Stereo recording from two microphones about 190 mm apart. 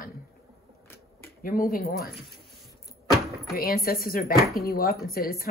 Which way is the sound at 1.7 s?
55° left (ahead or behind).